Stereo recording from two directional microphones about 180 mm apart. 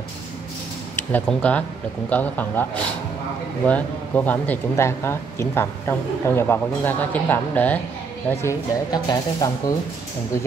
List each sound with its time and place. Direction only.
0.9 s speech: 10° left (ahead or behind)